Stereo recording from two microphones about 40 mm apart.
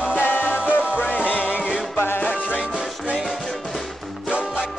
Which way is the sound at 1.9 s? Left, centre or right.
Left.